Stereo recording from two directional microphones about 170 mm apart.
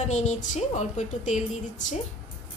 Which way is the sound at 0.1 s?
45° left (ahead or behind).